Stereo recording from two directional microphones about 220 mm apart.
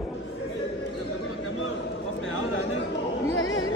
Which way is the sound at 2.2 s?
65° left (ahead or behind).